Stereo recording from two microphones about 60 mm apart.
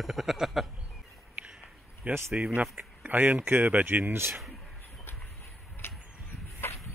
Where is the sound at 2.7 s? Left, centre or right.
Right.